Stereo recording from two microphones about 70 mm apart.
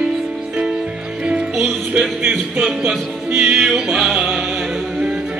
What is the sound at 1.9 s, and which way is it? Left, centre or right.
Music, right.